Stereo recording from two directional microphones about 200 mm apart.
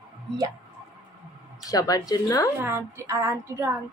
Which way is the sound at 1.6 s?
20° left (ahead or behind).